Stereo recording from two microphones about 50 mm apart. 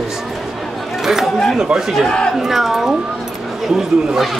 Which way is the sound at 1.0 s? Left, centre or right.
Centre.